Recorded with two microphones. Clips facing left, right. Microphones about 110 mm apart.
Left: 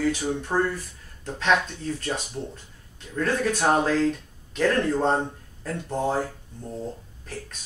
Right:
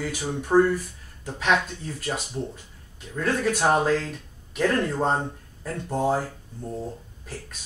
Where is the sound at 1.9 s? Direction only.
10° right (ahead or behind).